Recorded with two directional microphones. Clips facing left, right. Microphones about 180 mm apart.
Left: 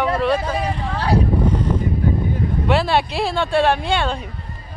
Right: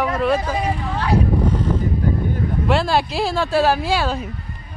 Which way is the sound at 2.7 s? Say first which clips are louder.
Left 1 dB; centre (ahead or behind).